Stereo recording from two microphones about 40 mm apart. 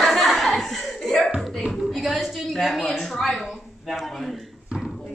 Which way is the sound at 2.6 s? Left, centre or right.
Centre.